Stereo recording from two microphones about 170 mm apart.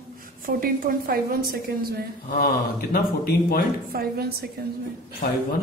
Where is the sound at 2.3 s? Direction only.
60° left (ahead or behind).